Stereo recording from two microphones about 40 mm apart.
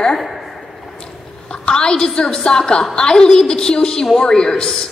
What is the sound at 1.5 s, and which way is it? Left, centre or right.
Speech, left.